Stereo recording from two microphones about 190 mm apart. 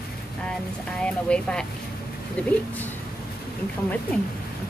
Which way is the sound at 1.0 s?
5° left (ahead or behind).